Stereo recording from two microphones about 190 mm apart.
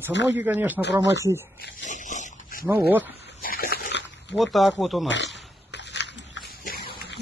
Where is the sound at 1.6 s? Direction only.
40° left (ahead or behind).